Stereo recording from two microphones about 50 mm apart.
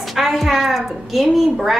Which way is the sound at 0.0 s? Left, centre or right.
Centre.